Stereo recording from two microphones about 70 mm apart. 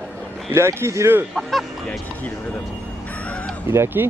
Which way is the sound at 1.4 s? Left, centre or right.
Centre.